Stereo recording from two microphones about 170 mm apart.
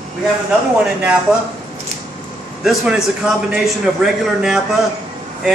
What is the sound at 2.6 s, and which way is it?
A man's voice, centre (ahead or behind).